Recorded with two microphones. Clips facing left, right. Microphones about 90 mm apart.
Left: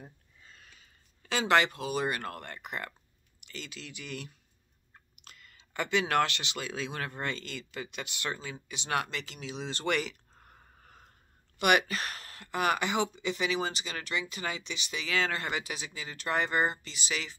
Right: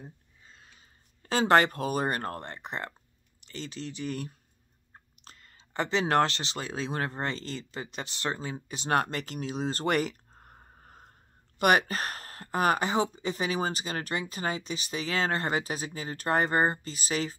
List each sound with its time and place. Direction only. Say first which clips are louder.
0.5 s sniff: right 1 dB; 30° right (ahead or behind)
1.2 s speech: right 4 dB; 40° right (ahead or behind)